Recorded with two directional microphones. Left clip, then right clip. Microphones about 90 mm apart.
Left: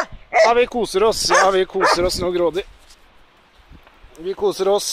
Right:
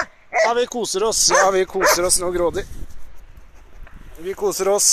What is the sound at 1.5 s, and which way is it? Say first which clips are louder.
Speech: left 1 dB; 20° right (ahead or behind).